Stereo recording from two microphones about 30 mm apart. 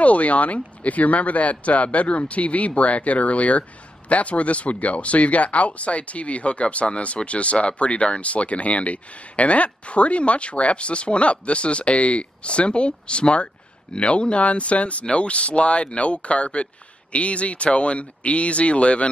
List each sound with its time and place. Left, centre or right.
0.0 s speech: left